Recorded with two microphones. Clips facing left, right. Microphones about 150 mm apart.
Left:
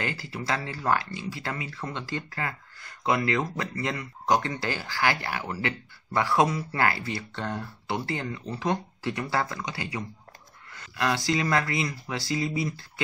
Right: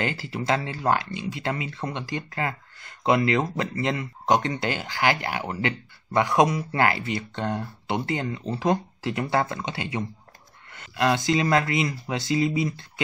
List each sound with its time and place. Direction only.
0.0 s speech: 25° right (ahead or behind)